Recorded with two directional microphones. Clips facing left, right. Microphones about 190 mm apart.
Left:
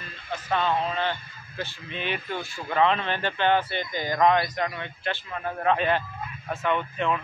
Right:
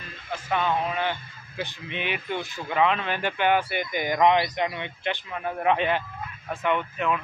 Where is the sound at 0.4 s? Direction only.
10° right (ahead or behind).